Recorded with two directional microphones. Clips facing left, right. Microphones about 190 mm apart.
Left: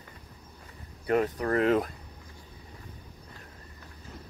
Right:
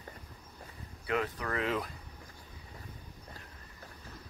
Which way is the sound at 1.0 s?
40° left (ahead or behind).